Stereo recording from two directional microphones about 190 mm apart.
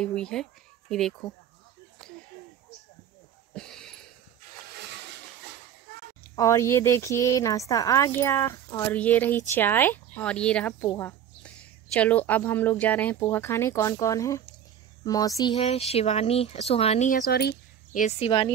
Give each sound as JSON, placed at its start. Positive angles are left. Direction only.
{"t": 0.0, "sound": "speech", "side_deg": 5}
{"t": 3.5, "sound": "a sound", "side_deg": 5}
{"t": 6.3, "sound": "speech", "side_deg": 15}
{"t": 17.1, "sound": "speech", "side_deg": 55}
{"t": 18.0, "sound": "speech", "side_deg": 30}